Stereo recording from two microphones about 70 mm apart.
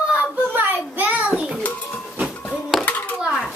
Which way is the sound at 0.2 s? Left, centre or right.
Right.